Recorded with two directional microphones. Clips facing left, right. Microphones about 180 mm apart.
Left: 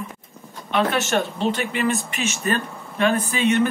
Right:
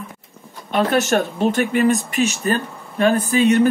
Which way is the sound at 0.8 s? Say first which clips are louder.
Right 5 dB; 40° right (ahead or behind).